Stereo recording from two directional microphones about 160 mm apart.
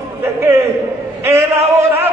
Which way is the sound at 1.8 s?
15° right (ahead or behind).